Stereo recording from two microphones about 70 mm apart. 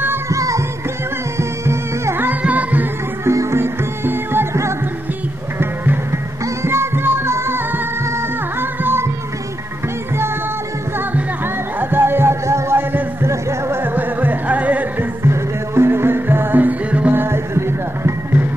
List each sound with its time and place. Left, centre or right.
0.3 s music: right
1.4 s music: right
2.2 s music: right
3.3 s music: right
6.4 s music: right
11.8 s music: right
13.8 s music: right
15.2 s music: right
17.1 s music: right